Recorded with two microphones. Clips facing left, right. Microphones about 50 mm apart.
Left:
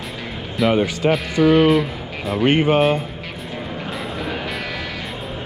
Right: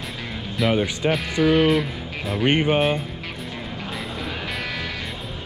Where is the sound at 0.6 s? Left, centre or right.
Centre.